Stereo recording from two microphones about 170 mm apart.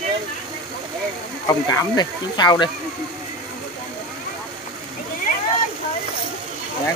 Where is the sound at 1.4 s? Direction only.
20° left (ahead or behind).